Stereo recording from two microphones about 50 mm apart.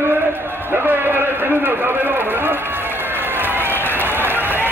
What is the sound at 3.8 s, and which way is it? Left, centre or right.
Applause, right.